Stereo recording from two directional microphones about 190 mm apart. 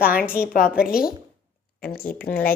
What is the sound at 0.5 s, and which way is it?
Speech, 50° left (ahead or behind).